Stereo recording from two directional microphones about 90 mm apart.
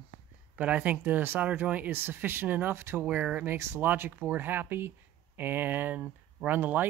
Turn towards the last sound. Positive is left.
turn(degrees=-20)  # may be behind; listen again after turning